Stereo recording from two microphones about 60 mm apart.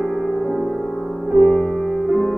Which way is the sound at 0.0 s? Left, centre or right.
Centre.